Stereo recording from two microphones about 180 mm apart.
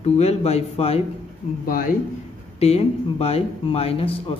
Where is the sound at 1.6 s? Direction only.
50° left (ahead or behind).